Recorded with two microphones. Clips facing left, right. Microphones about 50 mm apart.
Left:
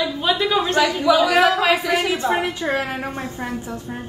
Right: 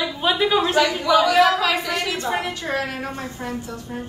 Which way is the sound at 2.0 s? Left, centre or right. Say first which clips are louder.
Left 4 dB; centre.